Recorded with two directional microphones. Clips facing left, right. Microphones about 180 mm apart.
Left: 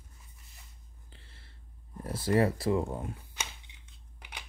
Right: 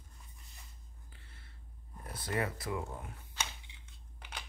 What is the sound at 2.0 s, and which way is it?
Speech, 30° left (ahead or behind).